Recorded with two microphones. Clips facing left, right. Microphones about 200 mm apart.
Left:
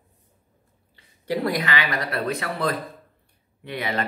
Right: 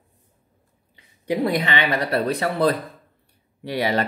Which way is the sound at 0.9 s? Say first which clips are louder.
Right 3 dB; 15° right (ahead or behind).